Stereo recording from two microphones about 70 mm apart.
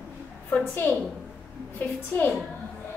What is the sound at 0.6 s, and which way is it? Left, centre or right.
Speech, left.